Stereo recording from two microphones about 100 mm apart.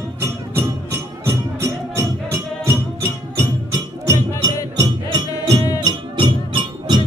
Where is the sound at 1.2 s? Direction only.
25° right (ahead or behind).